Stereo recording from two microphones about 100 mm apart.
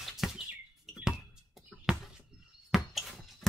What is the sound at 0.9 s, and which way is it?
Music, 5° right (ahead or behind).